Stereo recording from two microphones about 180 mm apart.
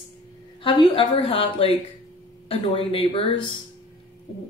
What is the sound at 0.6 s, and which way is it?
A woman's voice, 25° left (ahead or behind).